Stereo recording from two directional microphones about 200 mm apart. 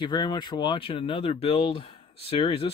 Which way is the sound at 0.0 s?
20° left (ahead or behind).